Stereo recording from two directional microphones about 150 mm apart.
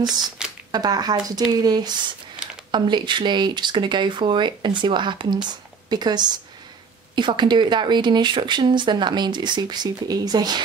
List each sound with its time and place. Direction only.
0.7 s speech: 25° right (ahead or behind)